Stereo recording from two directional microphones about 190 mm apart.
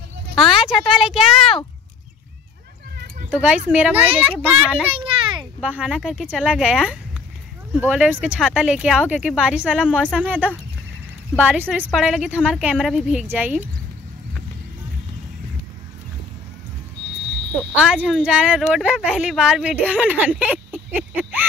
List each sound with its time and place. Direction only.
0.8 s a woman's voice: centre (ahead or behind)
3.3 s speech: 5° right (ahead or behind)
4.8 s children playing: 30° right (ahead or behind)
5.4 s a woman's voice: 5° right (ahead or behind)
17.7 s a woman's voice: 5° right (ahead or behind)
20.7 s a sound: 10° right (ahead or behind)